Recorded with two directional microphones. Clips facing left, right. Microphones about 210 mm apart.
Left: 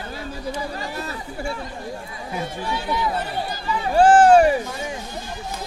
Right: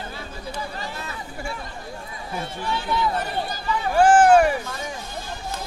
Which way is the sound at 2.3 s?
15° left (ahead or behind).